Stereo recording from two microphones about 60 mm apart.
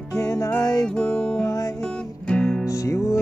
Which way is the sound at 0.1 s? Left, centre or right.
Left.